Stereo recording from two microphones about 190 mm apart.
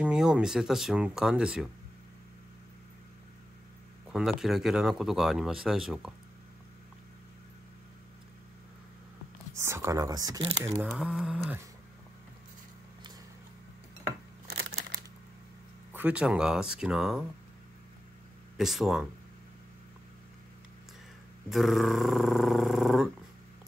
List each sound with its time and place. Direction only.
0.0 s speech: 5° right (ahead or behind)
4.1 s speech: centre (ahead or behind)
9.6 s speech: 15° right (ahead or behind)
10.9 s speech: centre (ahead or behind)
14.6 s a sound: 55° right (ahead or behind)
15.9 s speech: 10° right (ahead or behind)
18.6 s speech: centre (ahead or behind)
21.5 s speech: centre (ahead or behind)